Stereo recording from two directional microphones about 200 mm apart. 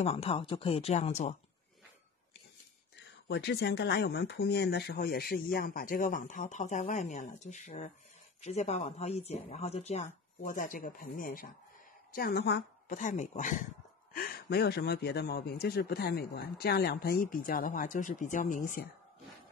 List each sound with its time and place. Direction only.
0.0 s speech: 30° left (ahead or behind)
3.3 s speech: 60° left (ahead or behind)
12.8 s speech: 40° left (ahead or behind)
14.1 s speech: 50° left (ahead or behind)